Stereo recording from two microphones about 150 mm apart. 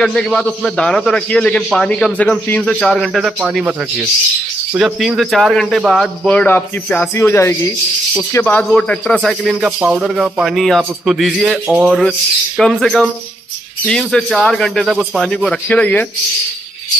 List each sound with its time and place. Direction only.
0.0 s a man's voice: 5° left (ahead or behind)